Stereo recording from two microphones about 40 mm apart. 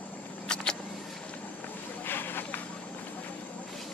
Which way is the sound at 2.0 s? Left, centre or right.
Left.